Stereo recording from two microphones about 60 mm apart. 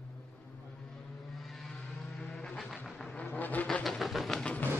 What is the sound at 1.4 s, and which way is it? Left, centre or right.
Vehicle, centre.